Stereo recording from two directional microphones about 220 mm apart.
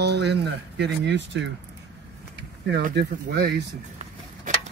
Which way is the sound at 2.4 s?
50° right (ahead or behind).